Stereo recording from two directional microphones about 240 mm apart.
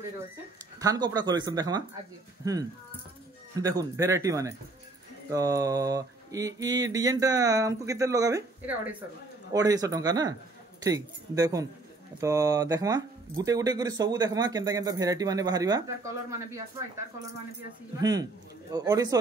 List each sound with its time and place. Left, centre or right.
0.7 s speech: centre
3.6 s speech: centre
18.7 s speech: centre